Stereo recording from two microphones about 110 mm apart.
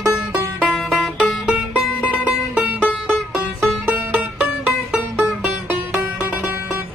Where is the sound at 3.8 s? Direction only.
15° right (ahead or behind).